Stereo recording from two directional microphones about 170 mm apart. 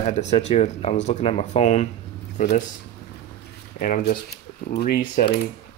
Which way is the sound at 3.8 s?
55° left (ahead or behind).